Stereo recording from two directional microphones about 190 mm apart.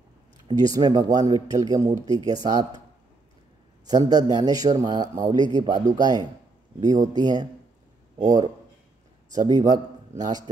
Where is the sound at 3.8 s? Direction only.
20° right (ahead or behind).